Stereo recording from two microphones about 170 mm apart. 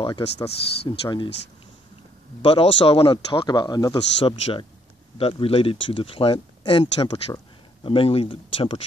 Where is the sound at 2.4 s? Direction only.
30° left (ahead or behind).